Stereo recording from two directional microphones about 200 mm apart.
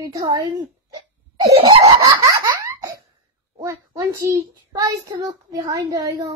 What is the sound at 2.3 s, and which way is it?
Laughter, 15° right (ahead or behind).